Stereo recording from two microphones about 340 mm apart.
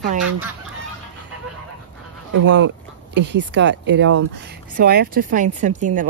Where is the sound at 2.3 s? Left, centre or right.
Right.